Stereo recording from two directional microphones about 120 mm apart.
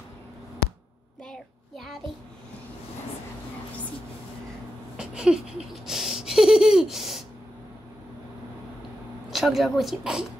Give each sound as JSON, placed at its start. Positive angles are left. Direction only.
{"t": 1.3, "sound": "child singing", "side_deg": 0}
{"t": 4.9, "sound": "a sound", "side_deg": -5}
{"t": 9.3, "sound": "speech", "side_deg": 0}